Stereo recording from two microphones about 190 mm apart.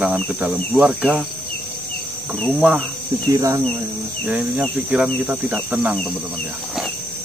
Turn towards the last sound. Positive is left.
turn(degrees=-5)  # may be behind; listen again after turning